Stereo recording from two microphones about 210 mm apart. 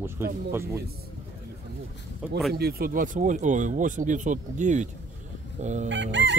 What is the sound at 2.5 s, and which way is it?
Speech, 50° right (ahead or behind).